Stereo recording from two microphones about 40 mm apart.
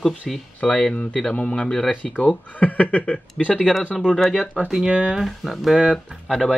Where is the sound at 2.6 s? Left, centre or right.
Left.